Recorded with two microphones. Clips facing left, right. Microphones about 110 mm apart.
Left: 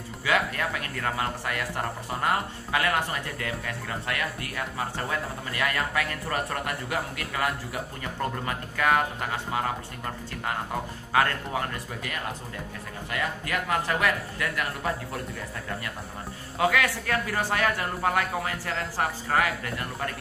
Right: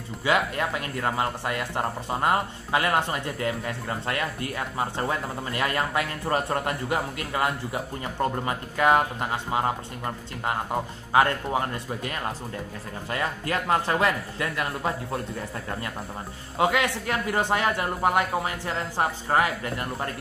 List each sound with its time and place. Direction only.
0.2 s speech: 25° right (ahead or behind)
11.1 s speech: 25° right (ahead or behind)
16.5 s speech: 25° right (ahead or behind)